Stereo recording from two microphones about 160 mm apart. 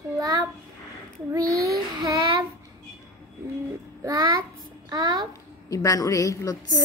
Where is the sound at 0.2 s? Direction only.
25° right (ahead or behind).